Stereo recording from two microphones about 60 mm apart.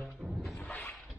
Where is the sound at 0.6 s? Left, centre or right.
Left.